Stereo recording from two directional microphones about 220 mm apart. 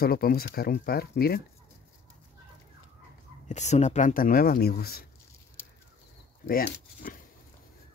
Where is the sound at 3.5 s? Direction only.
30° left (ahead or behind).